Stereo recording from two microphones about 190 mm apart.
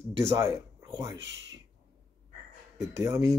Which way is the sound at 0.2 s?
15° right (ahead or behind).